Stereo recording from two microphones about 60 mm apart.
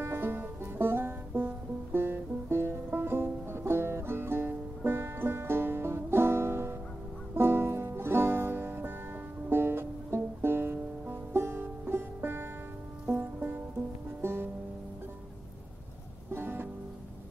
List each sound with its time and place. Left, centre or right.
0.0 s music: right
13.0 s music: right
14.2 s music: right
16.3 s music: right